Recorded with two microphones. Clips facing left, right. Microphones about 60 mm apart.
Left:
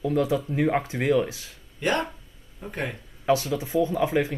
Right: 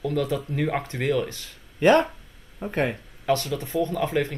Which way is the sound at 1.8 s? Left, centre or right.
Right.